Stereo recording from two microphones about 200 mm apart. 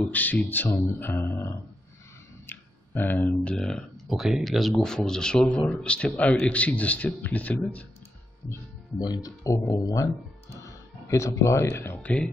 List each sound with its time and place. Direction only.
0.0 s speech: 10° left (ahead or behind)
9.0 s speech: 20° left (ahead or behind)